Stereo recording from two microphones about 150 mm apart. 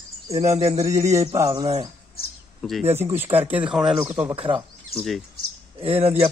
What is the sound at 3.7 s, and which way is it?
Speech, 5° right (ahead or behind).